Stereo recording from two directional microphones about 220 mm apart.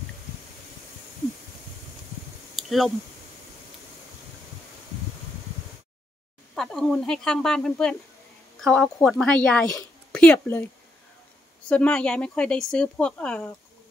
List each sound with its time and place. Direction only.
2.5 s a sound: centre (ahead or behind)
6.5 s speech: centre (ahead or behind)
11.7 s speech: 5° left (ahead or behind)